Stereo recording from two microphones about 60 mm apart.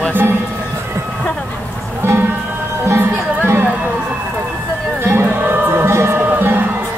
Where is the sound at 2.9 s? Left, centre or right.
Right.